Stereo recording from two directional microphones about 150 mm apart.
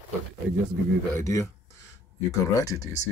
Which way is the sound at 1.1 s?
20° left (ahead or behind).